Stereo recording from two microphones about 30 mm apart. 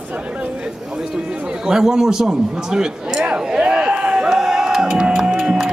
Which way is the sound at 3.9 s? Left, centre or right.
Right.